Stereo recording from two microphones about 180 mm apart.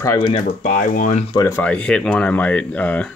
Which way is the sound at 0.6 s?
40° left (ahead or behind).